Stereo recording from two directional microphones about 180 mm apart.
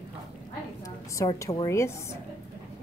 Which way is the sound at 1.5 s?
15° left (ahead or behind).